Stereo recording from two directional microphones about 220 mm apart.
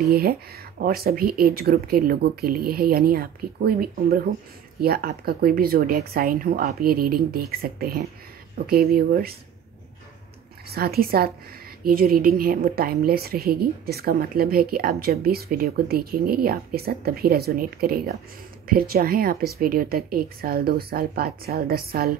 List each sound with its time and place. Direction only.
0.1 s a woman's voice: 45° right (ahead or behind)
10.7 s a woman's voice: 45° right (ahead or behind)